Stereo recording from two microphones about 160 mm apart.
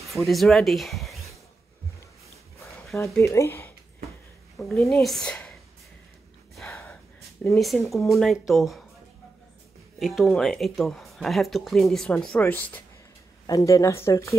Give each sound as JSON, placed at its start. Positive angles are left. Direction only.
{"t": 0.1, "sound": "speech", "side_deg": 0}
{"t": 2.9, "sound": "speech", "side_deg": 0}
{"t": 3.3, "sound": "speech", "side_deg": 15}
{"t": 4.6, "sound": "a woman's voice", "side_deg": 0}
{"t": 6.6, "sound": "gasp", "side_deg": 15}
{"t": 7.5, "sound": "speech", "side_deg": 0}
{"t": 9.9, "sound": "speech", "side_deg": 0}